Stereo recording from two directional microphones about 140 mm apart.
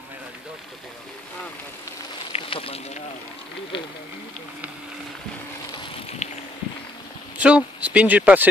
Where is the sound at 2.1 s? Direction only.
40° left (ahead or behind).